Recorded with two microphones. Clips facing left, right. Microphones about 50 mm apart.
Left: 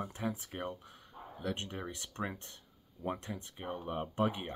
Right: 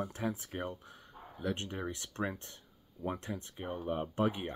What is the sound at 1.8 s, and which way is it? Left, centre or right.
Speech, centre.